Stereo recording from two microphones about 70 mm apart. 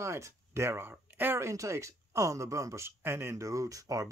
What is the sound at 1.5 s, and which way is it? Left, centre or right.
Speech, right.